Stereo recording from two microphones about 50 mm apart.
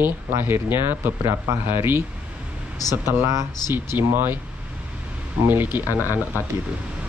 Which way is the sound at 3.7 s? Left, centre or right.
Right.